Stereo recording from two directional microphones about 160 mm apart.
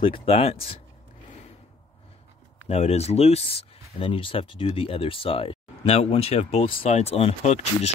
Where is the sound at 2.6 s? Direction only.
45° left (ahead or behind).